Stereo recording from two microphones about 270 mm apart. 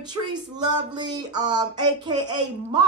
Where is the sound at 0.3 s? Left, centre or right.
Centre.